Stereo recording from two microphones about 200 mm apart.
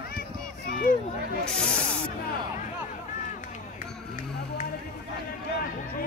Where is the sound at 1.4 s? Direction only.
5° left (ahead or behind).